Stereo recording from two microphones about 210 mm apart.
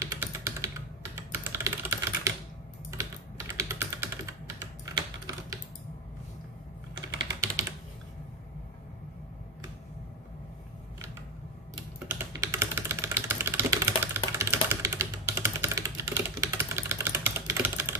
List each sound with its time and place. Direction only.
0.0 s typing: 15° right (ahead or behind)
7.2 s typing: 15° right (ahead or behind)
12.1 s typing: 10° right (ahead or behind)